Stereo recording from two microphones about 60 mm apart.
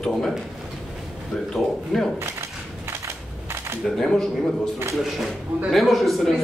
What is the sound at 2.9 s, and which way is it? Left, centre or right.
Typewriter, right.